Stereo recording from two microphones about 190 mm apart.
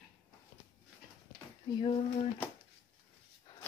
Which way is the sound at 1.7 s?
25° left (ahead or behind).